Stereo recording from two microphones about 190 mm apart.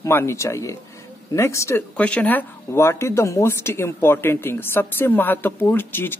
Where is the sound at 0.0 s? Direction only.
15° left (ahead or behind).